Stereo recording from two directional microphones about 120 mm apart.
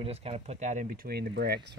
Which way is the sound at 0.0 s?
55° right (ahead or behind).